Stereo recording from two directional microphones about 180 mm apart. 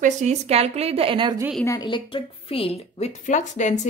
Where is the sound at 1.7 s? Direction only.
25° left (ahead or behind).